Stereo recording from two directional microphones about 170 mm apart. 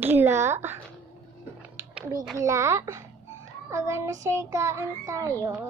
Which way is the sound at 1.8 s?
15° right (ahead or behind).